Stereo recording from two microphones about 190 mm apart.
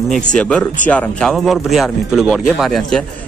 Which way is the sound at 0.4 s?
5° left (ahead or behind).